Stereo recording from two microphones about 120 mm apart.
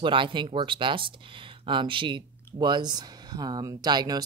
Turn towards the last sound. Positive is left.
turn(degrees=-35)  # may be behind; listen again after turning